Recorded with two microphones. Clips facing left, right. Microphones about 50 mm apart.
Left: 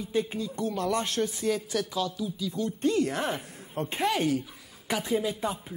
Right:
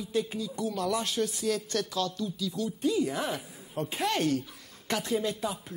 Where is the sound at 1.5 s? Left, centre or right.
Centre.